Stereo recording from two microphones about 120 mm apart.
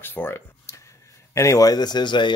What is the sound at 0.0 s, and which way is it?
Speech, 20° left (ahead or behind).